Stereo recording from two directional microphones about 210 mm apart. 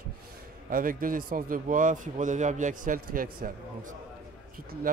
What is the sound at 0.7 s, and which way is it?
A man's voice, 40° right (ahead or behind).